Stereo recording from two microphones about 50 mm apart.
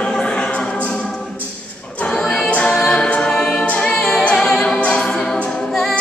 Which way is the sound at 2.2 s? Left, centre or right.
Centre.